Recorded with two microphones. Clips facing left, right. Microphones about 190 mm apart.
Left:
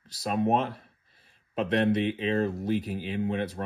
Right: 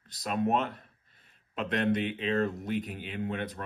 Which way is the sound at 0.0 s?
35° left (ahead or behind).